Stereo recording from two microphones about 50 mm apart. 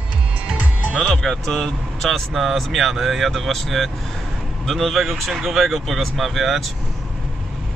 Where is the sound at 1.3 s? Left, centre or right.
Centre.